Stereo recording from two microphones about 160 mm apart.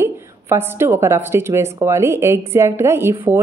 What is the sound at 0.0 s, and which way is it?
A woman's voice, 15° right (ahead or behind).